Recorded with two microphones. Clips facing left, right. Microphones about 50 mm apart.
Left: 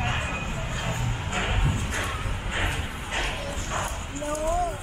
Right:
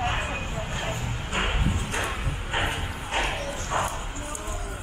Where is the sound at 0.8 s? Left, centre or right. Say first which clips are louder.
Even; right.